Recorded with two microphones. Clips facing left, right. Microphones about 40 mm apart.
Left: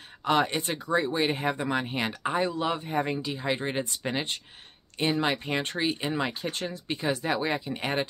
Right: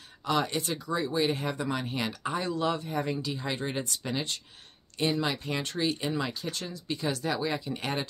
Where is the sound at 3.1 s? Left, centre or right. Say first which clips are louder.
Left 3 dB; centre.